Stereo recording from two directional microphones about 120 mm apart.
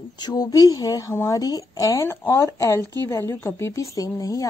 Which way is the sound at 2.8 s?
35° right (ahead or behind).